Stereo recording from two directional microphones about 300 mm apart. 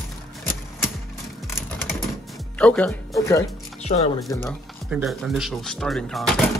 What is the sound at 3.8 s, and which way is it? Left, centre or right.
Speech, left.